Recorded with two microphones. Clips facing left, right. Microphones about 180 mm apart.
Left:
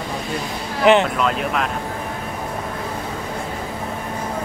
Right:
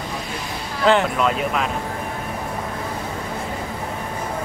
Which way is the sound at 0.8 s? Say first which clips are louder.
Left 3 dB; 20° left (ahead or behind).